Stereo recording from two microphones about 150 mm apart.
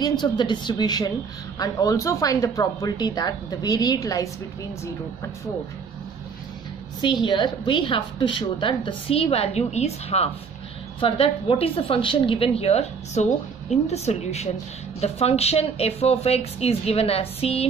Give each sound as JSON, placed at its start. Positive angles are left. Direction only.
{"t": 0.0, "sound": "speech", "side_deg": 30}
{"t": 7.2, "sound": "a woman's voice", "side_deg": 30}